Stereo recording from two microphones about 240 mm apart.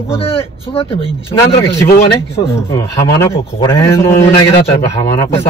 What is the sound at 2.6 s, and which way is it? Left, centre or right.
A man's voice, centre.